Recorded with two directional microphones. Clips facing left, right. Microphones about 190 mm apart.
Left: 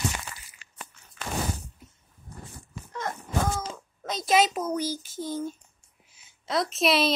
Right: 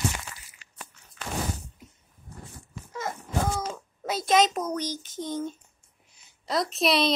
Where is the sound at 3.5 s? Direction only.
5° right (ahead or behind).